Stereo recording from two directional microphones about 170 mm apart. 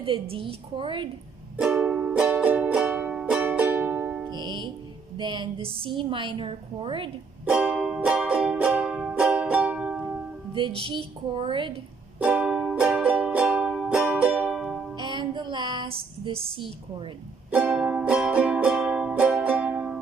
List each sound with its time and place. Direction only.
0.0 s a woman's voice: 30° right (ahead or behind)
1.6 s music: 5° right (ahead or behind)
4.3 s music: 25° right (ahead or behind)
5.1 s a woman's voice: 30° right (ahead or behind)
7.4 s music: 5° right (ahead or behind)
10.5 s music: 30° right (ahead or behind)
10.9 s a woman's voice: 30° right (ahead or behind)
12.2 s music: 5° right (ahead or behind)
15.0 s music: 25° right (ahead or behind)
17.5 s music: 10° right (ahead or behind)